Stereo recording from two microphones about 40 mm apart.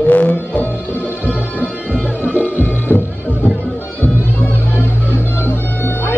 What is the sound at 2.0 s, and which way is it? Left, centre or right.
Music, left.